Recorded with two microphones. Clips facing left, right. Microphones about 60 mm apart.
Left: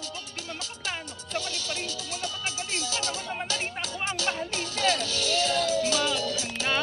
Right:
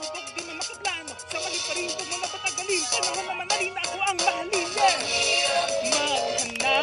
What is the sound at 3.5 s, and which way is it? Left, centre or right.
Music, right.